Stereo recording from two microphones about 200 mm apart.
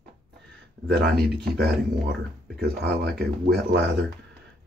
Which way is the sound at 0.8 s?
55° right (ahead or behind).